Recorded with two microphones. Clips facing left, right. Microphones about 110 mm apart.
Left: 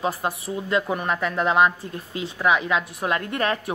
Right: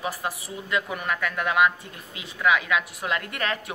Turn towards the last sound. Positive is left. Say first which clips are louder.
# left 5 dB
turn(degrees=30)  # may be behind; listen again after turning